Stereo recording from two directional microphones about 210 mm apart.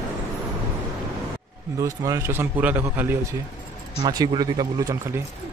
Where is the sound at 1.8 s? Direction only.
15° right (ahead or behind).